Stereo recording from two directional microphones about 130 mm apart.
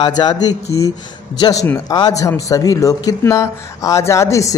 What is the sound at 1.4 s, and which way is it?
Speech, 25° left (ahead or behind).